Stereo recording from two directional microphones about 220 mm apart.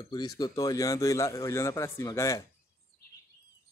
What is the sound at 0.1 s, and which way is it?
Speech, 15° left (ahead or behind).